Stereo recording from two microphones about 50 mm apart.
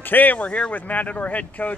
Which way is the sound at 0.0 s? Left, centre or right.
Left.